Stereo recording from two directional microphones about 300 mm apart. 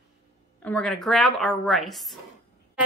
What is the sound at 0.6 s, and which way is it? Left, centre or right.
Speech, centre.